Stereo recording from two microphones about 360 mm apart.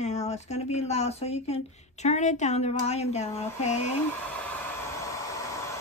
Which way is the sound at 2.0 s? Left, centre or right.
Centre.